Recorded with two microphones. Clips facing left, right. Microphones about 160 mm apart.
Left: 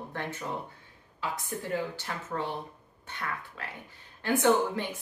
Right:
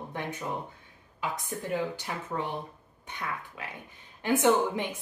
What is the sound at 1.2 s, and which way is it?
Speech, 15° right (ahead or behind).